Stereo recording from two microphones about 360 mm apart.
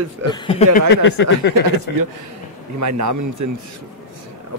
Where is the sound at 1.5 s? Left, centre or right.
Right.